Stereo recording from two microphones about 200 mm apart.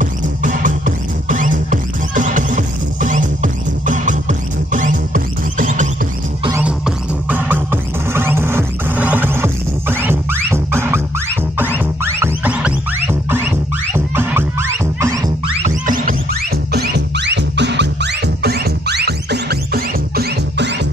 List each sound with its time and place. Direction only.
0.0 s music: 40° right (ahead or behind)
7.2 s music: 10° right (ahead or behind)
15.6 s music: 40° right (ahead or behind)
16.7 s music: 55° right (ahead or behind)